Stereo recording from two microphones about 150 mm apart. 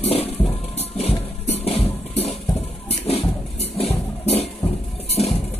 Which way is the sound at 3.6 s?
45° left (ahead or behind).